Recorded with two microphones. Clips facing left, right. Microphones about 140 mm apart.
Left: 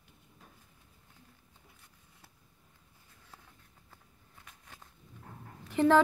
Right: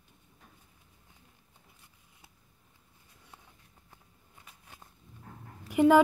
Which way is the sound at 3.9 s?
10° right (ahead or behind).